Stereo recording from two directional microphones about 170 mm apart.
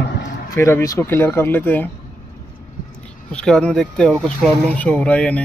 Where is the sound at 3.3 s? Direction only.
5° left (ahead or behind).